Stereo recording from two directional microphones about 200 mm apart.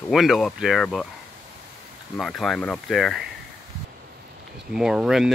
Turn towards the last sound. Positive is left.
turn(degrees=0)  # may be behind; listen again after turning